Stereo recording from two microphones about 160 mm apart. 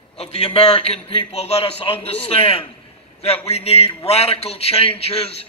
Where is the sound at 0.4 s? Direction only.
35° left (ahead or behind).